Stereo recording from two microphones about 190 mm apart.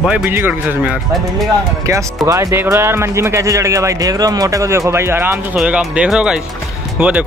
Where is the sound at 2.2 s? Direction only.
15° right (ahead or behind).